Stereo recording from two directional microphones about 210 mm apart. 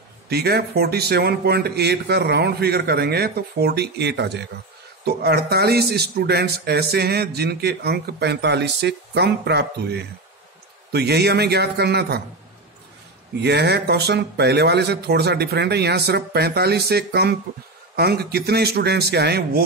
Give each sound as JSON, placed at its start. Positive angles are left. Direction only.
{"t": 0.3, "sound": "speech", "side_deg": -50}
{"t": 13.4, "sound": "speech", "side_deg": -55}